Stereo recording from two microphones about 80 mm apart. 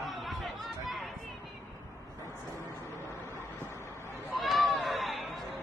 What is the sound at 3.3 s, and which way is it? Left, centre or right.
Vehicle, left.